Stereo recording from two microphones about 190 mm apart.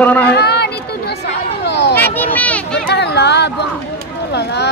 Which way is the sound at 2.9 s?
60° left (ahead or behind).